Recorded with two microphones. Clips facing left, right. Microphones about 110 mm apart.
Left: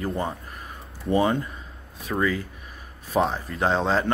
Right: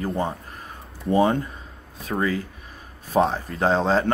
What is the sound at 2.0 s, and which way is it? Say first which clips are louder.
Speech: even; 35° right (ahead or behind).